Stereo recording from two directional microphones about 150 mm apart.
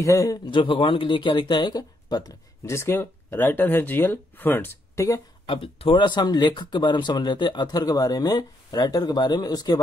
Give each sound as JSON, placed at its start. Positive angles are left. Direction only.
{"t": 0.0, "sound": "speech", "side_deg": 20}
{"t": 5.5, "sound": "speech", "side_deg": 35}